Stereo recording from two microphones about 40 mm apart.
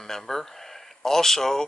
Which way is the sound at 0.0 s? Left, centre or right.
Centre.